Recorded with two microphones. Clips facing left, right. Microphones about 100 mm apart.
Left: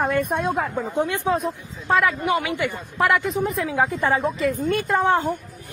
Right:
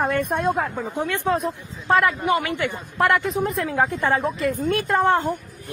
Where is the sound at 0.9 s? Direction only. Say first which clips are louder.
Left 2 dB; 20° left (ahead or behind).